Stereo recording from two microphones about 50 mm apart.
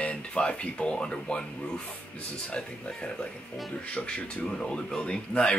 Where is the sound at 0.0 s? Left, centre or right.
Left.